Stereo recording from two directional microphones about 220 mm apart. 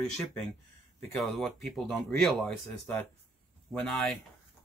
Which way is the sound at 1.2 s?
Centre (ahead or behind).